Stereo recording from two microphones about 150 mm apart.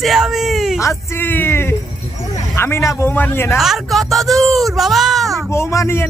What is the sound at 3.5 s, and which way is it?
Speech, centre (ahead or behind).